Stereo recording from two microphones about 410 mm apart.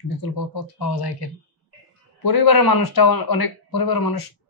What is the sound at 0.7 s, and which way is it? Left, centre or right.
Speech, left.